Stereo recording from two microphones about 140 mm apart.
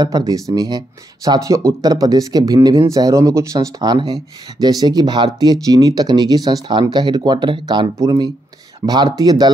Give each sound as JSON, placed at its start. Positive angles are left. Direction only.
{"t": 0.0, "sound": "speech", "side_deg": -25}